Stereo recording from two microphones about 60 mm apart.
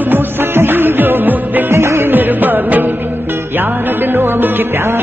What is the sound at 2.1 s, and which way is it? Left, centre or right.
Music, right.